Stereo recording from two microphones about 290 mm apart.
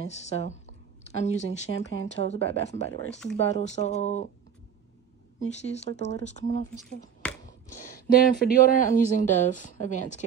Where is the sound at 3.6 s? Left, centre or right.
Left.